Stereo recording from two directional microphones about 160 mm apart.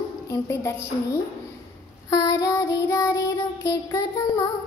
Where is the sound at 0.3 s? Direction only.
20° left (ahead or behind).